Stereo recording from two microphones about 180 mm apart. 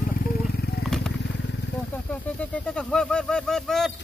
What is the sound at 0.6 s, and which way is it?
Vehicle, 60° left (ahead or behind).